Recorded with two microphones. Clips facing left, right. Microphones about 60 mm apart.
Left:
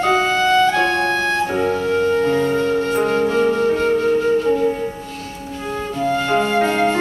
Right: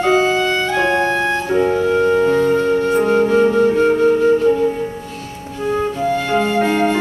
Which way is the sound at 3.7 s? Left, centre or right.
Centre.